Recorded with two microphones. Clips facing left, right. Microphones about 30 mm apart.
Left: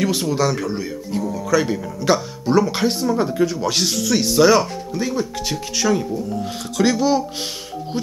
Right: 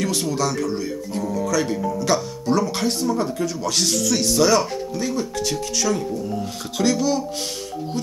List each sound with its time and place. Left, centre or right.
0.0 s speech: centre